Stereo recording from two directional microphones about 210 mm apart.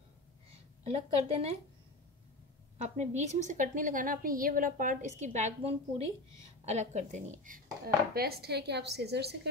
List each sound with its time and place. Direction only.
0.8 s a woman's voice: 30° right (ahead or behind)
2.8 s a woman's voice: 35° right (ahead or behind); by 9.5 s 50° right (ahead or behind)